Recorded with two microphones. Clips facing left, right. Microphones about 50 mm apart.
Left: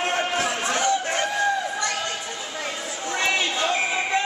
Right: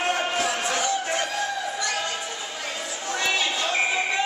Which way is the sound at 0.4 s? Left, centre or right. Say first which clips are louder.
Left 1 dB; left.